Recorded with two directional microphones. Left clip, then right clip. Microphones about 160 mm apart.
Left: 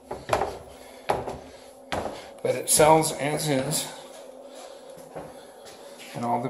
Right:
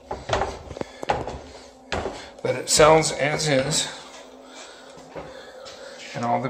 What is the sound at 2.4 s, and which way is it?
Speech, 5° left (ahead or behind).